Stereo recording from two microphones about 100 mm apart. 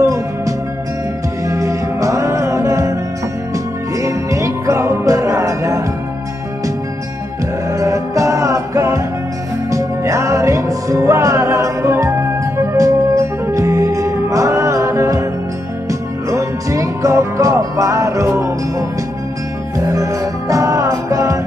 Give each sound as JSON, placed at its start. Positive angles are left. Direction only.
{"t": 0.0, "sound": "music", "side_deg": -35}
{"t": 7.7, "sound": "music", "side_deg": -35}
{"t": 19.9, "sound": "music", "side_deg": -35}